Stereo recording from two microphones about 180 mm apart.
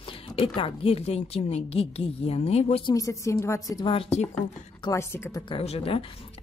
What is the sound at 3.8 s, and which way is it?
Speech, 35° left (ahead or behind).